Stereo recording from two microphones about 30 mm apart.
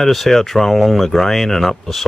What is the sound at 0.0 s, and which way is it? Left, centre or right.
Speech, centre.